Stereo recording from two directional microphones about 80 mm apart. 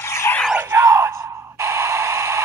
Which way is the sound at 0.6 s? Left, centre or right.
Right.